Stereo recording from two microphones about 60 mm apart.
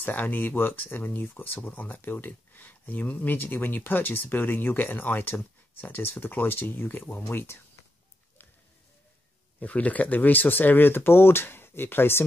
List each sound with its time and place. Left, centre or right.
0.0 s speech: left
9.6 s speech: left